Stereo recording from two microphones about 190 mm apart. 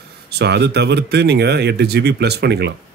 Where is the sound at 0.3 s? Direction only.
60° right (ahead or behind).